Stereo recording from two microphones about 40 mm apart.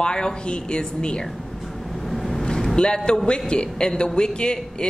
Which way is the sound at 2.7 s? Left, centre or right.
Left.